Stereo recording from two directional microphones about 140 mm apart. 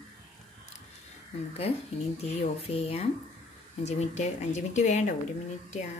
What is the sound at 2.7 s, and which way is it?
A woman's voice, 45° left (ahead or behind).